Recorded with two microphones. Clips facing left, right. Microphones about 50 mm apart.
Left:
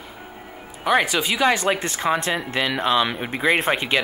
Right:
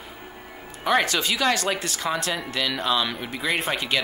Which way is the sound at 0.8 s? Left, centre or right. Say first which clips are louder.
Left 2 dB; centre.